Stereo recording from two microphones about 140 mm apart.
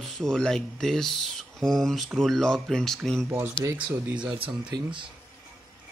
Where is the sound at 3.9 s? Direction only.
10° right (ahead or behind).